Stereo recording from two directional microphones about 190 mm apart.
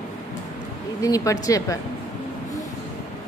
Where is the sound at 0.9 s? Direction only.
15° left (ahead or behind).